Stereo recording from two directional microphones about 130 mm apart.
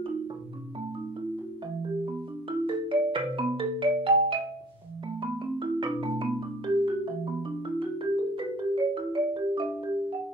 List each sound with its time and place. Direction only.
2.6 s music: 40° right (ahead or behind)
5.2 s marimba: 40° right (ahead or behind)
7.6 s music: 40° right (ahead or behind)